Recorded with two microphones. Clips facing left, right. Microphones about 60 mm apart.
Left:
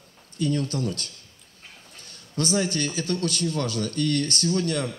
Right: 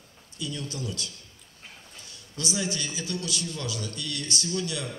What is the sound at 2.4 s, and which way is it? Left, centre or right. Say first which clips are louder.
A man's voice: left 6 dB; left.